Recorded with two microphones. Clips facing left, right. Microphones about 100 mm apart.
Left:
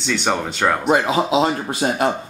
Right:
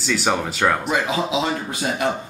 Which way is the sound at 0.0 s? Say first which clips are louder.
Even; 5° right (ahead or behind).